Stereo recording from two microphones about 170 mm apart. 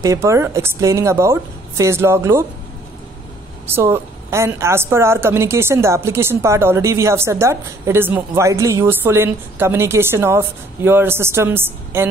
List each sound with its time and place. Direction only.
0.0 s a woman's voice: 15° right (ahead or behind)
3.6 s a woman's voice: 15° right (ahead or behind)